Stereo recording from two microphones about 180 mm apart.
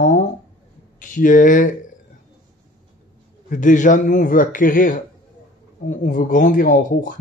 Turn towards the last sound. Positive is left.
turn(degrees=50)  # may be behind; listen again after turning